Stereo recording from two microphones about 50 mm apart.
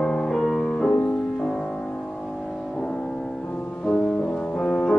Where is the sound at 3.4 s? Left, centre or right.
Left.